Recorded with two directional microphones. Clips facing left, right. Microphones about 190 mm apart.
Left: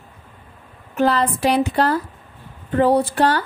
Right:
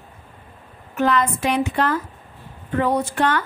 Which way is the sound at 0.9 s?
35° left (ahead or behind).